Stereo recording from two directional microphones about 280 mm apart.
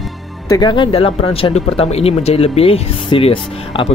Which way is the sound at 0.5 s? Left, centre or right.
Centre.